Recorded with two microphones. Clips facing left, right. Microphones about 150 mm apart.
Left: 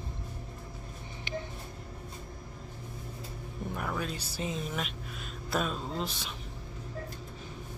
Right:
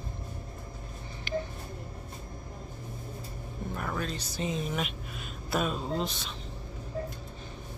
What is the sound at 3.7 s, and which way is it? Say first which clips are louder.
Speech: right 1 dB; 5° left (ahead or behind).